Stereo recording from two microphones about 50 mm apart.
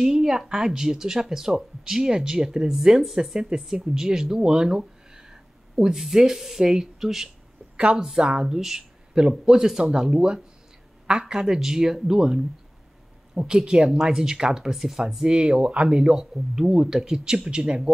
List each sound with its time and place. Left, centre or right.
0.0 s a woman's voice: centre
7.7 s a woman's voice: right